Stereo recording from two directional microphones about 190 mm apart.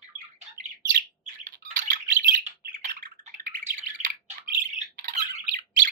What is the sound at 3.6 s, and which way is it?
Squawk, 40° right (ahead or behind).